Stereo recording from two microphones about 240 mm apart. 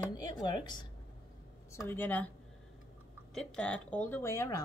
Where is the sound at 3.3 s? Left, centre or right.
Centre.